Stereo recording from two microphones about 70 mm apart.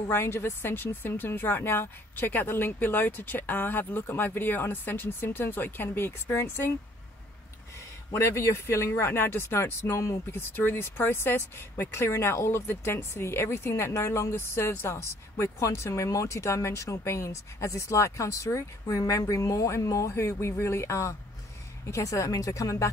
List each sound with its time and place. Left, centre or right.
0.1 s speech: left
8.1 s speech: left